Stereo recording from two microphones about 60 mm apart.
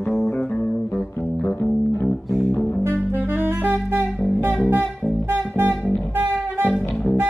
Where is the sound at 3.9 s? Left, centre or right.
Right.